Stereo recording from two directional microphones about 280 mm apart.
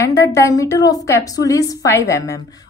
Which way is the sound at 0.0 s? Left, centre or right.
Centre.